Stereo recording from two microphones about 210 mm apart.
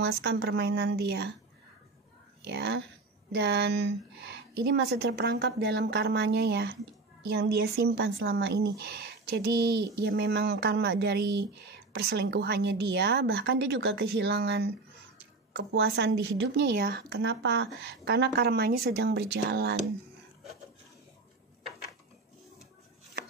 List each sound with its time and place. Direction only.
0.1 s speech: 50° right (ahead or behind)
2.4 s speech: 55° right (ahead or behind)